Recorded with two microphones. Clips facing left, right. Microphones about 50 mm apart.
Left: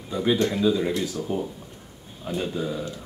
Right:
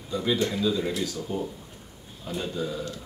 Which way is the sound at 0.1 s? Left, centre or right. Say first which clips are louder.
Left 3 dB; centre.